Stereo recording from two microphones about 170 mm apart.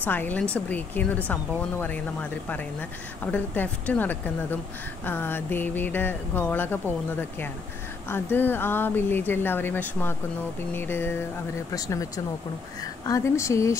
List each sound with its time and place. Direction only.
0.0 s speech: 10° left (ahead or behind)